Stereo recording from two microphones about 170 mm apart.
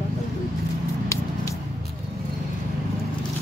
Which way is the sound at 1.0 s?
20° left (ahead or behind).